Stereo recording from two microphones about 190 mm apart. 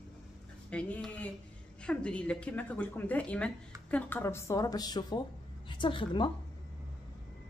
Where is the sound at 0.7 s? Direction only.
5° left (ahead or behind); by 6.3 s 25° left (ahead or behind).